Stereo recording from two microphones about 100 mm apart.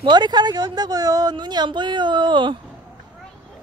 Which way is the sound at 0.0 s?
50° right (ahead or behind).